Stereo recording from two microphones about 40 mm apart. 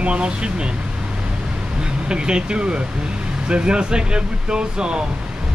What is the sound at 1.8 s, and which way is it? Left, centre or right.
Speech, right.